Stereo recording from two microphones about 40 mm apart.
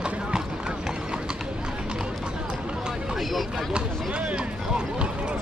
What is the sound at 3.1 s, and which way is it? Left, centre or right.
Speech, centre.